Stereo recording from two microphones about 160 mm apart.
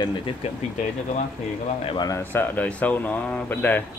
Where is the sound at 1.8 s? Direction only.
25° left (ahead or behind).